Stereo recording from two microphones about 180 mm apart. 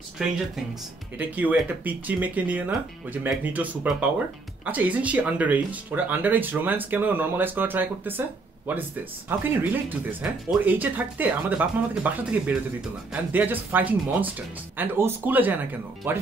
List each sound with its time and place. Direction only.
0.2 s speech: 5° right (ahead or behind)
9.4 s speech: 10° right (ahead or behind)